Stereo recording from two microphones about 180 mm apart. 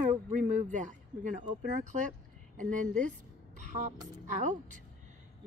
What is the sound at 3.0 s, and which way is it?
Music, 45° right (ahead or behind).